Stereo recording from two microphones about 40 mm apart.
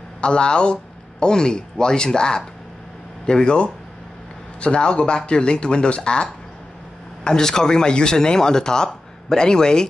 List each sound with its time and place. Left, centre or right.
0.2 s speech: left
7.2 s speech: centre